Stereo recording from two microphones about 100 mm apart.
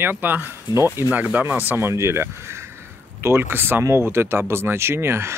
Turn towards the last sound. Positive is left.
turn(degrees=-25)  # may be behind; listen again after turning